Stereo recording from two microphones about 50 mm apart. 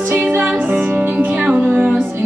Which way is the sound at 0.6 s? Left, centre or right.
Right.